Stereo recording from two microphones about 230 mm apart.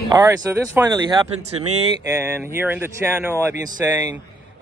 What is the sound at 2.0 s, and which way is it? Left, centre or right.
Speech, centre.